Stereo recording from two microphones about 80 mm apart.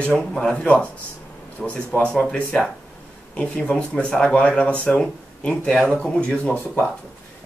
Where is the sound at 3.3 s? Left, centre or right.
Centre.